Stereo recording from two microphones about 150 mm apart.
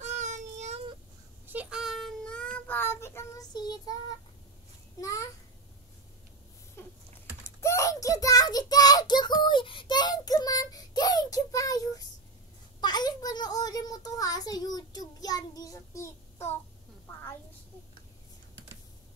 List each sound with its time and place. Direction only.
0.0 s child singing: 50° right (ahead or behind)
1.5 s child singing: 10° right (ahead or behind); by 3.4 s 15° left (ahead or behind)
3.5 s child singing: 30° left (ahead or behind)
5.0 s child singing: 20° left (ahead or behind)
6.8 s typing: 15° left (ahead or behind)
7.6 s child singing: 20° left (ahead or behind)
12.8 s a sound: 25° left (ahead or behind)